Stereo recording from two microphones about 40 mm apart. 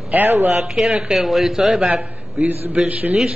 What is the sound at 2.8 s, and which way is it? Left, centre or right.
Speech, right.